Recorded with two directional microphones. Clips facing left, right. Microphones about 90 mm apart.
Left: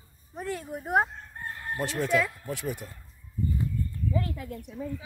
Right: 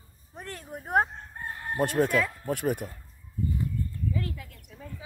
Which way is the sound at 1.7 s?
50° right (ahead or behind).